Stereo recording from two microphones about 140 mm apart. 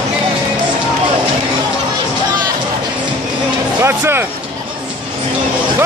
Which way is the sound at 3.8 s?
15° right (ahead or behind).